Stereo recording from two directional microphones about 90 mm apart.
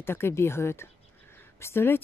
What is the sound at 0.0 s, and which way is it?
Speech, 25° left (ahead or behind).